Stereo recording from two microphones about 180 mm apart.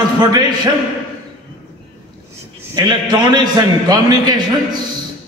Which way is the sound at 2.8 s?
25° right (ahead or behind).